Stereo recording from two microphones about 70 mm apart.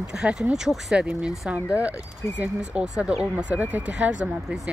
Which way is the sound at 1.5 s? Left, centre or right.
Right.